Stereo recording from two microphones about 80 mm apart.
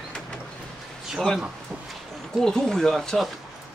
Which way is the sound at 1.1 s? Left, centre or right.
Centre.